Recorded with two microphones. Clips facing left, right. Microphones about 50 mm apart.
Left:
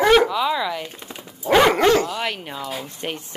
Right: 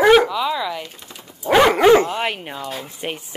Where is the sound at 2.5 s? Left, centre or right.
Centre.